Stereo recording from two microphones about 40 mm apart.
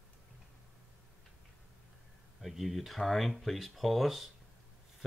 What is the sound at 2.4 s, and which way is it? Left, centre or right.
Speech, centre.